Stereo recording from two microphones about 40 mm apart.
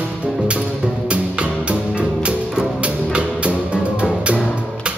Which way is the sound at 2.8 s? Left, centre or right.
Right.